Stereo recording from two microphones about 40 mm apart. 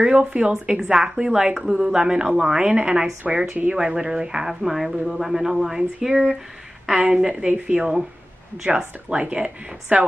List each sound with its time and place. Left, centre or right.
0.0 s a woman's voice: right
2.6 s a woman's voice: right
3.3 s a woman's voice: centre
9.1 s speech: right